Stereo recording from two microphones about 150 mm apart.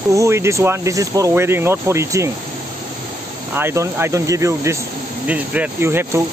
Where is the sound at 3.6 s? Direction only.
15° right (ahead or behind).